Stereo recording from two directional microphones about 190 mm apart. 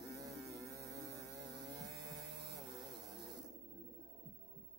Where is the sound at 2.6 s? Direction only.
Centre (ahead or behind).